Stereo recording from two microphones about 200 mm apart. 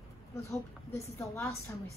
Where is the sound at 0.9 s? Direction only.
15° left (ahead or behind).